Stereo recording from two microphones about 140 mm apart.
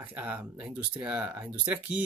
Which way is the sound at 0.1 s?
10° right (ahead or behind).